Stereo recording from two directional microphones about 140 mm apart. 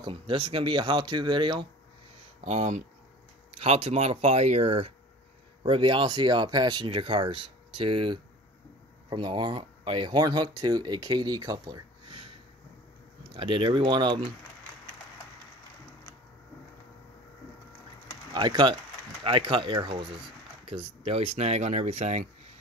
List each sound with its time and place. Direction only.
0.0 s speech: 40° right (ahead or behind)
2.4 s speech: 55° right (ahead or behind); by 14.2 s 35° right (ahead or behind)
18.3 s speech: 30° right (ahead or behind); by 22.2 s 55° right (ahead or behind)